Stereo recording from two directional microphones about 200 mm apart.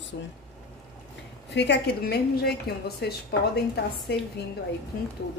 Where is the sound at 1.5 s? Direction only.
60° left (ahead or behind).